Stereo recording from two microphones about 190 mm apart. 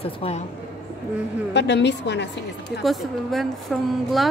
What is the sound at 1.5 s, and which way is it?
Speech, 65° left (ahead or behind).